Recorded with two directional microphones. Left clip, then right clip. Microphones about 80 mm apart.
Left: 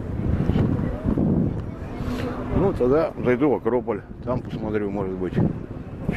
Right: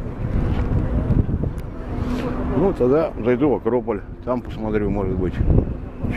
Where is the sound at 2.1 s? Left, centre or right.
Centre.